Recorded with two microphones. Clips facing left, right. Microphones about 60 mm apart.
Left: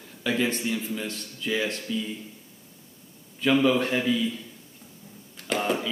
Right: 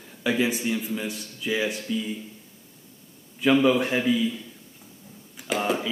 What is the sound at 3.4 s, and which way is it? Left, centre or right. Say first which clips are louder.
A man's voice: right 2 dB; centre.